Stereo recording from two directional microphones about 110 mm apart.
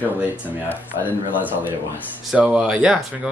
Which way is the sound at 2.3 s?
10° right (ahead or behind).